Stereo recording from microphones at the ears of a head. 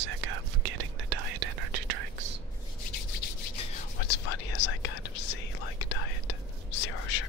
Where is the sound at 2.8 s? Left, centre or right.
Left.